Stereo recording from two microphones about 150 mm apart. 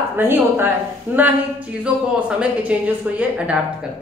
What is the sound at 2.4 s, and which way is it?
Speech, 10° right (ahead or behind).